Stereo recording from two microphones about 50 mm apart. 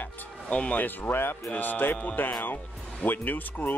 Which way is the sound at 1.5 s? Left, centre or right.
Left.